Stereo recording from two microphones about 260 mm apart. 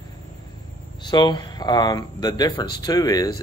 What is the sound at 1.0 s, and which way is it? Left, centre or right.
Speech, centre.